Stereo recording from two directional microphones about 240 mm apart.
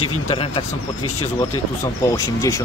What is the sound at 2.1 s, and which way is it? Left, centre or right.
Speech, centre.